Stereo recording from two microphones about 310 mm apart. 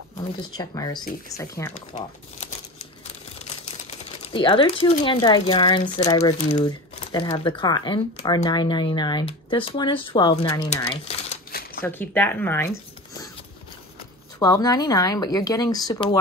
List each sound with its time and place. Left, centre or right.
0.6 s speech: centre
4.2 s speech: centre
10.7 s crumpling: centre
11.8 s speech: centre
14.4 s speech: centre